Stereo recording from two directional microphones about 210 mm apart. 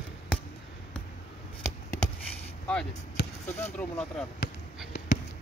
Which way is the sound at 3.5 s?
30° left (ahead or behind).